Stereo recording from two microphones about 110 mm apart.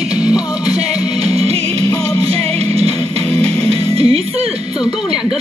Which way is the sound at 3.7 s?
60° right (ahead or behind).